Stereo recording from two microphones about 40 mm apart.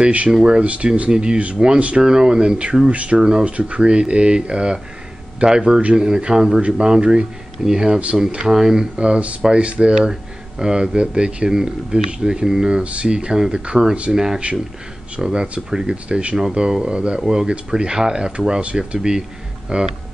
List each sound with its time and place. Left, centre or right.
0.0 s speech: right
0.3 s speech: centre
0.6 s speech: right
1.1 s speech: right
2.9 s speech: right
3.2 s speech: right
3.4 s speech: right
5.9 s speech: centre
8.9 s speech: right
12.8 s speech: right
15.7 s speech: centre
16.1 s speech: right